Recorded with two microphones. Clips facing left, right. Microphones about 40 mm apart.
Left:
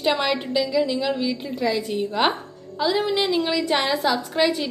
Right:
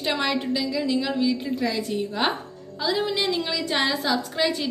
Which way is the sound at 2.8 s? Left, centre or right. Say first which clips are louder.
Left 3 dB; left.